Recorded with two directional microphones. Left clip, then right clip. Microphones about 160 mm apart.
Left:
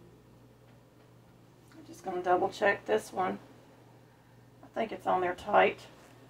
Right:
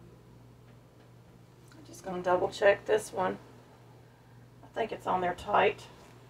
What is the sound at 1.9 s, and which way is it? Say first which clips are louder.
A woman's voice: even; 20° left (ahead or behind).